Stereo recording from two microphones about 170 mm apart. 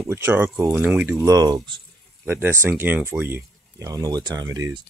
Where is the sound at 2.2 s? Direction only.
15° right (ahead or behind).